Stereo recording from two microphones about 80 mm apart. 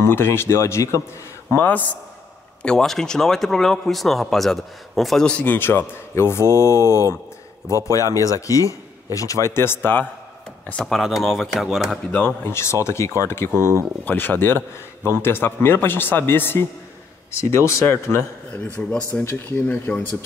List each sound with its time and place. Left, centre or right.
0.0 s speech: left
1.5 s speech: left
2.6 s speech: centre
5.4 s speech: left
10.8 s speech: centre
11.9 s speech: centre
12.4 s speech: left; by 19.2 s centre
19.2 s speech: left